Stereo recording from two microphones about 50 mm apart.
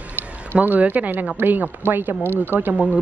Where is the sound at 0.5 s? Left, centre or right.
Centre.